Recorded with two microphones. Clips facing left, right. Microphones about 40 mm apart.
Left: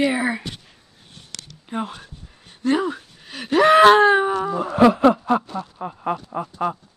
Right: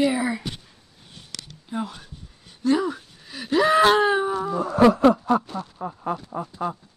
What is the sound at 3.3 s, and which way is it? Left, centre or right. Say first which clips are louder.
Gasp: left 5 dB; left.